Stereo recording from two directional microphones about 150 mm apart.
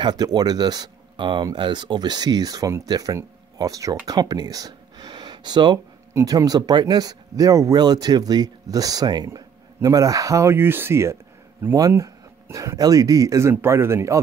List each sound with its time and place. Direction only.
0.0 s speech: 30° right (ahead or behind)